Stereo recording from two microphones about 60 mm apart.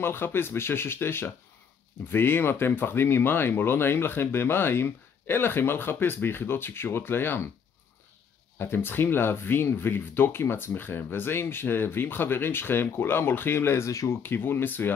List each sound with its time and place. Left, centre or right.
0.0 s speech: left
8.5 s speech: left
13.8 s speech: left
14.2 s speech: left